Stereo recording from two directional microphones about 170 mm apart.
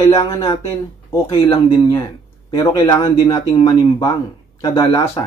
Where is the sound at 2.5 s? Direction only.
20° left (ahead or behind).